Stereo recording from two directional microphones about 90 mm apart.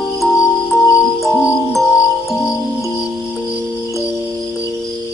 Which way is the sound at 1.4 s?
Centre (ahead or behind).